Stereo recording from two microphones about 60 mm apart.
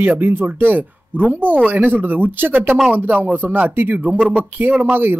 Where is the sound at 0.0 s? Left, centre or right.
Right.